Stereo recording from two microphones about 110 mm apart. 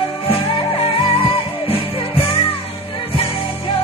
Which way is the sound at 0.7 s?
60° left (ahead or behind).